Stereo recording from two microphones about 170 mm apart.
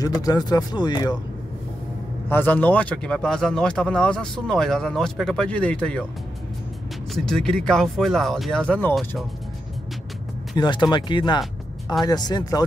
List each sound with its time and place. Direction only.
0.0 s speech: 25° left (ahead or behind)
2.2 s speech: 10° left (ahead or behind)
7.2 s speech: centre (ahead or behind)
10.5 s speech: 25° left (ahead or behind)